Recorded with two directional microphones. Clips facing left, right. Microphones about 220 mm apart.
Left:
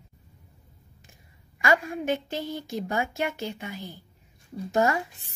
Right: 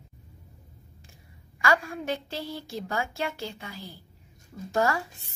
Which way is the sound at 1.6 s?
20° left (ahead or behind).